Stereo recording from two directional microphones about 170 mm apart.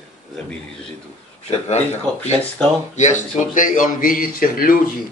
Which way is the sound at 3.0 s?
45° left (ahead or behind).